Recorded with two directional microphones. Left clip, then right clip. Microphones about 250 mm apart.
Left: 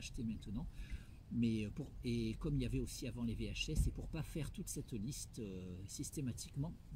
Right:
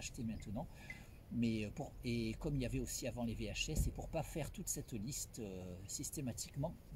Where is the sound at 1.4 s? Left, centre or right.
Centre.